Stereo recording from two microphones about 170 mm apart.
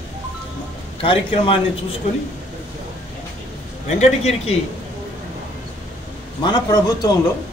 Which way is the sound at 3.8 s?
40° left (ahead or behind).